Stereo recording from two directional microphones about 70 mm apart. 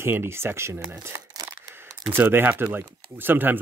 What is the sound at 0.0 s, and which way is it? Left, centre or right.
Speech, right.